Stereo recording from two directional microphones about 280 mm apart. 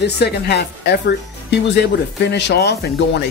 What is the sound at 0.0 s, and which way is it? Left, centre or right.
Speech, left.